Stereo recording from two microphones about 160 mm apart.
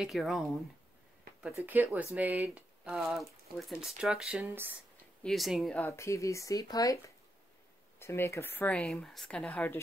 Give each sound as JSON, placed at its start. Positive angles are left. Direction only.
{"t": 0.0, "sound": "speech", "side_deg": 0}
{"t": 1.4, "sound": "speech", "side_deg": -10}
{"t": 5.2, "sound": "speech", "side_deg": 0}
{"t": 5.9, "sound": "speech", "side_deg": 15}
{"t": 8.0, "sound": "speech", "side_deg": 15}